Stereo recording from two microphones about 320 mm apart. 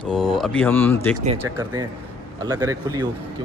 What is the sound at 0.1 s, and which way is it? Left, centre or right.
Speech, centre.